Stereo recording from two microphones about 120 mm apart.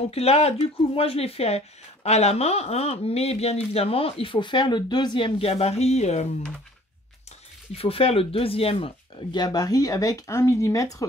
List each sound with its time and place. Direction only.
0.1 s speech: 60° left (ahead or behind)
7.7 s speech: 55° left (ahead or behind); by 11.1 s 30° left (ahead or behind)